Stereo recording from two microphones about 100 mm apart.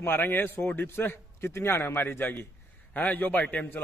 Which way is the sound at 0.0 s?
25° left (ahead or behind).